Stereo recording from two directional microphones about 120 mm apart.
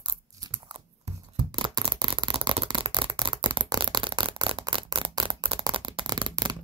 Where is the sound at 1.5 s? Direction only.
35° right (ahead or behind).